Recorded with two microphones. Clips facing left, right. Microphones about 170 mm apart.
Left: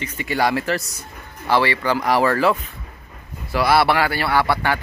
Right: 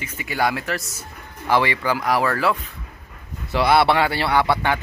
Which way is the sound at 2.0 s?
Centre (ahead or behind).